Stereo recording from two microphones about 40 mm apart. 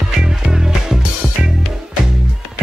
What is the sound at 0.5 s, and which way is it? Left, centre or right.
Music, centre.